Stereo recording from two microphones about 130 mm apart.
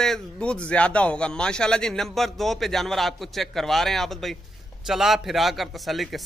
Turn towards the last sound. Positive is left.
turn(degrees=0)  # may be behind; listen again after turning